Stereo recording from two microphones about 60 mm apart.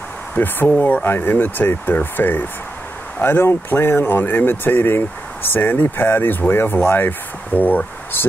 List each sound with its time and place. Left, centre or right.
0.3 s speech: left